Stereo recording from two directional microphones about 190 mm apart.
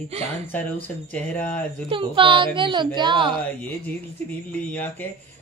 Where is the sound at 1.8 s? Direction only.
25° right (ahead or behind).